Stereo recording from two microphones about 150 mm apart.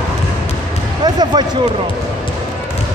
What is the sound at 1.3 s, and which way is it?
Speech, 30° right (ahead or behind).